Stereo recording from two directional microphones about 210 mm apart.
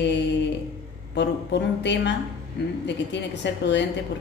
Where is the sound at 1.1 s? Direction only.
55° left (ahead or behind).